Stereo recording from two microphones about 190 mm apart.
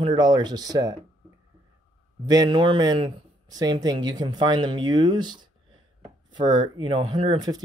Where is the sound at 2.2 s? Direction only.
20° right (ahead or behind).